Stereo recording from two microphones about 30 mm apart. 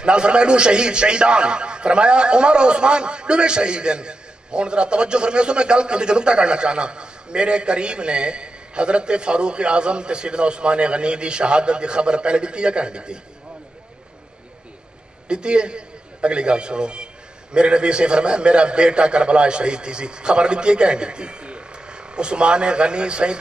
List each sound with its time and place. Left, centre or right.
0.0 s a man's voice: right
15.2 s a man's voice: right